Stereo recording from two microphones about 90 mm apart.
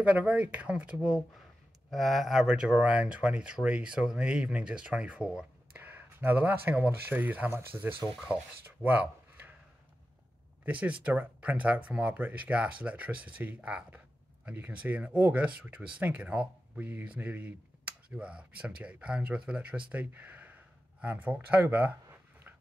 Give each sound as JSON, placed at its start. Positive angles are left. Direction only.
{"t": 0.0, "sound": "speech", "side_deg": -15}
{"t": 1.9, "sound": "speech", "side_deg": 0}
{"t": 5.8, "sound": "speech", "side_deg": -20}
{"t": 8.8, "sound": "a sound", "side_deg": -20}
{"t": 10.6, "sound": "speech", "side_deg": -15}